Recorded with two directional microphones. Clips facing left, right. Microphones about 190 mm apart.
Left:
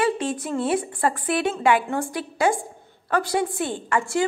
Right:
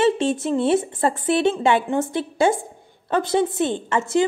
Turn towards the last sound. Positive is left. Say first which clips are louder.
# right 3 dB
turn(degrees=-20)  # may be behind; listen again after turning